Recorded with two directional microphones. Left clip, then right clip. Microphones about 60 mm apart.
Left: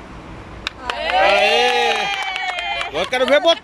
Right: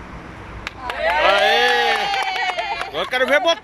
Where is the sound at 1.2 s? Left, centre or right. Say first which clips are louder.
Left 1 dB; centre.